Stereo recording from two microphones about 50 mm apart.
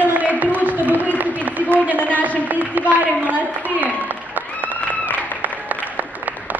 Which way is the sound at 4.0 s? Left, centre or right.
Right.